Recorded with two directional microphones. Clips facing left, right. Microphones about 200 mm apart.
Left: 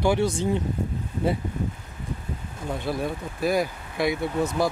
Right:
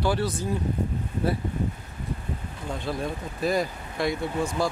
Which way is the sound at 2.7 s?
10° left (ahead or behind).